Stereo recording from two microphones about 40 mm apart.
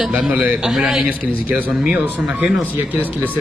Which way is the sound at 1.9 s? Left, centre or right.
Right.